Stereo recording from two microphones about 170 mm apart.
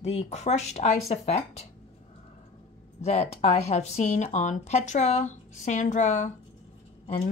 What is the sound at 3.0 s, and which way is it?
Speech, 40° left (ahead or behind).